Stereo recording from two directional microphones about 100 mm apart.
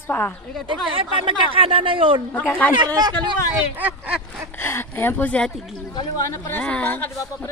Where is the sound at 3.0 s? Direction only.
45° right (ahead or behind).